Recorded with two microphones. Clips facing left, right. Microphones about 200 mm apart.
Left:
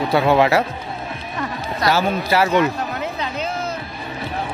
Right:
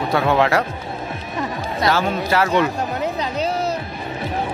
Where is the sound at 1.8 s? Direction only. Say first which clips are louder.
Left 1 dB; 5° left (ahead or behind).